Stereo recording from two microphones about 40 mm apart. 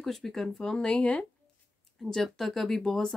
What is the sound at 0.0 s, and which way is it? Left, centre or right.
Speech, centre.